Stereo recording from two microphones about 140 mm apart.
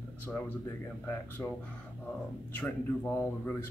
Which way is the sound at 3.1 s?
20° left (ahead or behind).